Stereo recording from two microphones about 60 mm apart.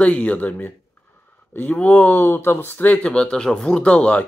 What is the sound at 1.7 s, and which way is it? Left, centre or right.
Speech, left.